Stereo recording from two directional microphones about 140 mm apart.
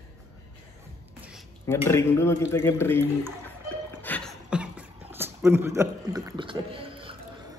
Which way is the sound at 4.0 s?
10° left (ahead or behind).